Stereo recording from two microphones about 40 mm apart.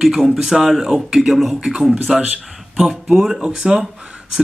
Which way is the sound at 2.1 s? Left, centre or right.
Centre.